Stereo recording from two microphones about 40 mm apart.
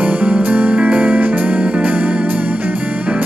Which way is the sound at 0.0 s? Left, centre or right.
Right.